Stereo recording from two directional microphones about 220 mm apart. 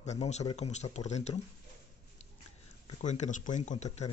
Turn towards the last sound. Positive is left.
turn(degrees=30)  # may be behind; listen again after turning